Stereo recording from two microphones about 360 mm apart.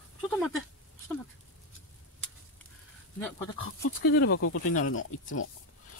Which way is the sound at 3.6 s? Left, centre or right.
Left.